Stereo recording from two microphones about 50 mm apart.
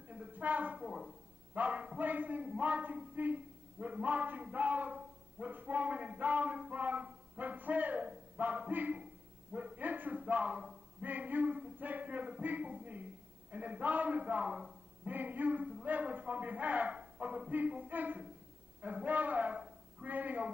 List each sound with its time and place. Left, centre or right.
0.1 s a woman's voice: right
0.7 s speech: centre
1.5 s a man's voice: right